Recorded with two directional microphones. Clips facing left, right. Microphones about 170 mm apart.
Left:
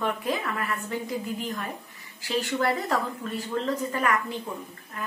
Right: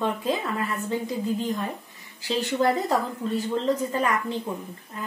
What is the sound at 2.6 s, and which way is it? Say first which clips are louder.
Speech: right 5 dB; 20° right (ahead or behind).